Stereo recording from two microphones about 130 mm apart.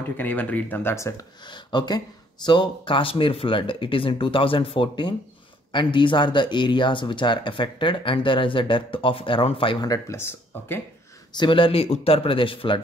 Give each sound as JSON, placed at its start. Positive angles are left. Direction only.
{"t": 0.2, "sound": "speech", "side_deg": 10}
{"t": 1.5, "sound": "speech", "side_deg": 35}
{"t": 9.8, "sound": "speech", "side_deg": 20}
{"t": 11.3, "sound": "speech", "side_deg": 40}